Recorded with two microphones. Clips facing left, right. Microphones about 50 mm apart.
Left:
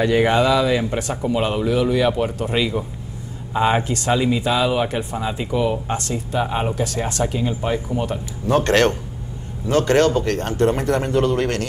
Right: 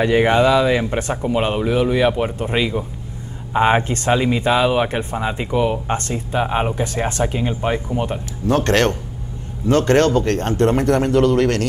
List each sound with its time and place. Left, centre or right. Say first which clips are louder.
0.0 s speech: right 2 dB; right
5.9 s speech: right 2 dB; right
8.4 s speech: even; left
9.7 s speech: right 2 dB; right